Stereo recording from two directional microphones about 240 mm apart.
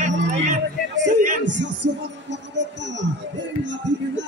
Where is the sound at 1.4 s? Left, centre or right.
Right.